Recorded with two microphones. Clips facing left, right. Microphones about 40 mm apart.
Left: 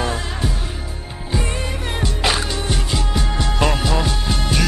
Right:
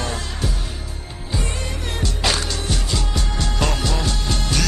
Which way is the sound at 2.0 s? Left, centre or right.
Centre.